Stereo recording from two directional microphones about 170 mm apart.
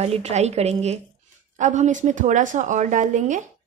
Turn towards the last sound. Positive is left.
turn(degrees=-45)  # may be behind; listen again after turning